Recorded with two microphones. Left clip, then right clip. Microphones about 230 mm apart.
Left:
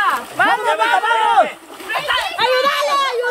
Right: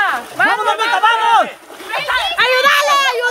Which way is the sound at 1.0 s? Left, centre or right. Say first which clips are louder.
Right 2 dB; right.